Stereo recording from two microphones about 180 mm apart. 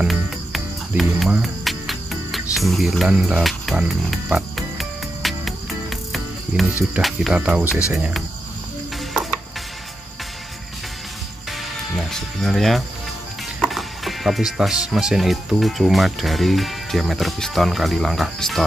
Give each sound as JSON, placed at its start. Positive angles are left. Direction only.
{"t": 0.0, "sound": "cricket", "side_deg": 0}
{"t": 7.0, "sound": "speech", "side_deg": 0}
{"t": 11.9, "sound": "speech", "side_deg": 0}